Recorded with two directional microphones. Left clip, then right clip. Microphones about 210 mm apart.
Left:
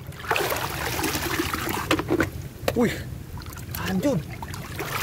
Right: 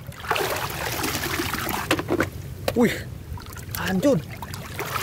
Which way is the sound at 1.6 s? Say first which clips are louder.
Even; 40° right (ahead or behind).